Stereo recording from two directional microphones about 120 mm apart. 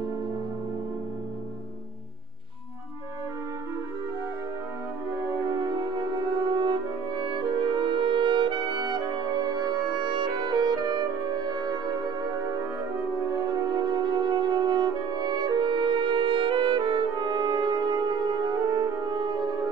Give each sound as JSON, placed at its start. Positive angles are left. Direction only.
{"t": 6.5, "sound": "french horn", "side_deg": -40}
{"t": 7.3, "sound": "music", "side_deg": -45}
{"t": 13.3, "sound": "brass instrument", "side_deg": -35}
{"t": 18.7, "sound": "music", "side_deg": -40}